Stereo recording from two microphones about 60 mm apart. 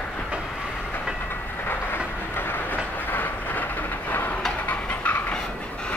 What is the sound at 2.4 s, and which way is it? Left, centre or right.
Train, left.